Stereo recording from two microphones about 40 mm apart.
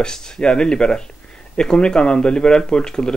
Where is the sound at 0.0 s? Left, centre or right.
Centre.